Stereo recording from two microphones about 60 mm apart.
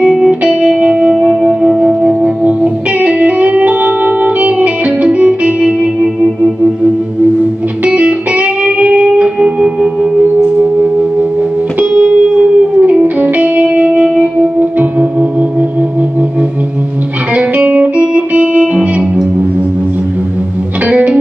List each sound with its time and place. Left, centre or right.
0.0 s music: centre
2.4 s music: right
7.8 s music: right
17.3 s music: right
20.8 s music: right